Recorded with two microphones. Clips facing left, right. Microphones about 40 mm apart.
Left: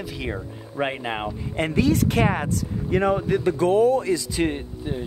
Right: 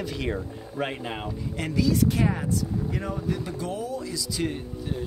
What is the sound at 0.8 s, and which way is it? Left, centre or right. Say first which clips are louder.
Speech: left 5 dB; left.